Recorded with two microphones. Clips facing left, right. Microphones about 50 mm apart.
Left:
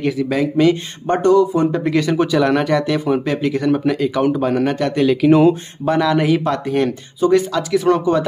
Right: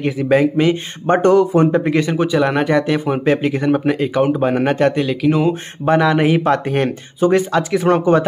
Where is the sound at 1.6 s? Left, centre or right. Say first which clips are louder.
Right 1 dB; right.